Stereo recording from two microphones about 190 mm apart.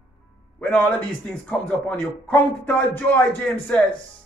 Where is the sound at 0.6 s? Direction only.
5° left (ahead or behind).